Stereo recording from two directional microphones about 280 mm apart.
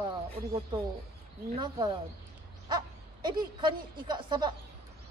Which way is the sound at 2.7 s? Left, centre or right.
Centre.